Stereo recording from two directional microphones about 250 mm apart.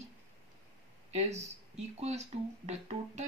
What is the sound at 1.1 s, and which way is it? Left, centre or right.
Speech, right.